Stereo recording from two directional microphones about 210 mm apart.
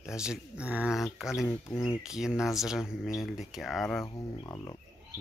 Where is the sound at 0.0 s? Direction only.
5° right (ahead or behind).